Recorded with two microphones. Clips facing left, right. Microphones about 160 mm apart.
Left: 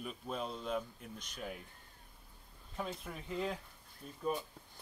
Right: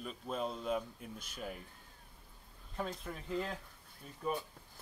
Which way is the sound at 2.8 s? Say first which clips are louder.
Right 1 dB; centre (ahead or behind).